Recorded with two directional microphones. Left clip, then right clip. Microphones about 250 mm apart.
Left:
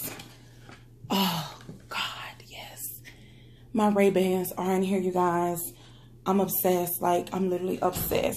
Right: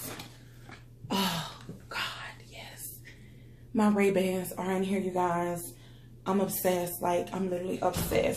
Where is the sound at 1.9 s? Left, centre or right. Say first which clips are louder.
Left 3 dB; left.